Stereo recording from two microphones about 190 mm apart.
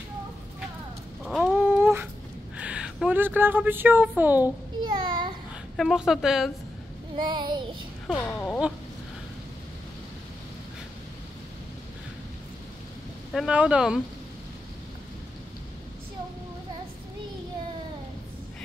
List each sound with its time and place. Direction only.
1.2 s a sound: centre (ahead or behind)
4.1 s a woman's voice: 10° right (ahead or behind)
4.8 s a sound: 25° right (ahead or behind)
5.8 s a woman's voice: centre (ahead or behind)
7.2 s child singing: 25° right (ahead or behind)
8.1 s speech: 10° left (ahead or behind)
13.3 s a woman's voice: 5° right (ahead or behind)